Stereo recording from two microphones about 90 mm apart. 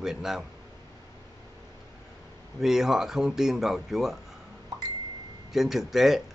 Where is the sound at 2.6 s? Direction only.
5° right (ahead or behind).